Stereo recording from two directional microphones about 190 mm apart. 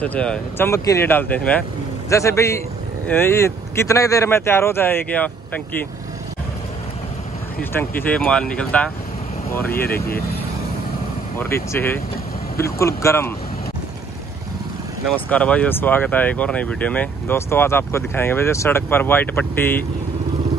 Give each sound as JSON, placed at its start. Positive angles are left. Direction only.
{"t": 0.0, "sound": "speech", "side_deg": 5}
{"t": 7.7, "sound": "speech", "side_deg": 10}
{"t": 11.3, "sound": "speech", "side_deg": 10}
{"t": 15.1, "sound": "speech", "side_deg": 5}